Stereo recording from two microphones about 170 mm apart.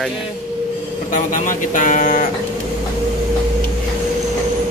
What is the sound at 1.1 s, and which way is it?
Speech, 50° left (ahead or behind).